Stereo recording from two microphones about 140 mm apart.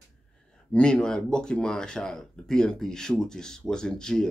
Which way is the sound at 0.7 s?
5° left (ahead or behind).